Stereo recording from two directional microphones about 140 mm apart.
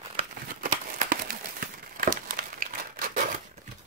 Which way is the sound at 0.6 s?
80° right.